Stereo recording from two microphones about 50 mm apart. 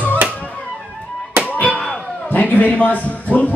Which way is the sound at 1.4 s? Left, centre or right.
Left.